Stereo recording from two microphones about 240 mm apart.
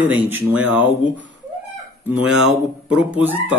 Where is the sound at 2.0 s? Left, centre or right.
Centre.